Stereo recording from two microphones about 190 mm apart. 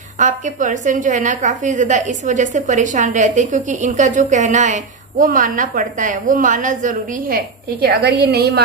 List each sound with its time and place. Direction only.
0.2 s a woman's voice: 40° right (ahead or behind); by 8.6 s 60° right (ahead or behind)